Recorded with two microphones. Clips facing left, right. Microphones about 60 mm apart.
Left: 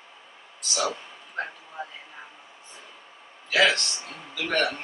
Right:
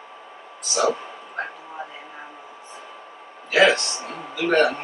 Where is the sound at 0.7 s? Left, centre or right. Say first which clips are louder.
Right 7 dB; right.